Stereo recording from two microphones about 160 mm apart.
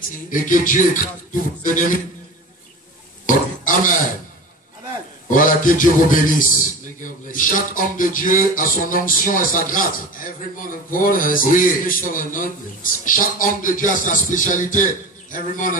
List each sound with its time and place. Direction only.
0.3 s speech: 55° left (ahead or behind)
3.3 s a sound: 55° left (ahead or behind)
5.3 s speech: 55° left (ahead or behind)
13.0 s music: 55° left (ahead or behind)
15.3 s speech: 55° left (ahead or behind)